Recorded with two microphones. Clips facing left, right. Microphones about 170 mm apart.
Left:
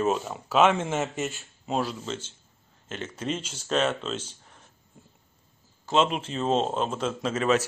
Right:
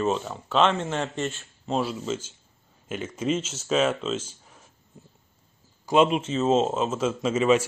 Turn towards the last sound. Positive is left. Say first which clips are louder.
# right 3 dB
turn(degrees=-5)  # may be behind; listen again after turning